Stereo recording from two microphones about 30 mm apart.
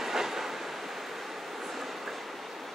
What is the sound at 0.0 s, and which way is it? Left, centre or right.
Train, centre.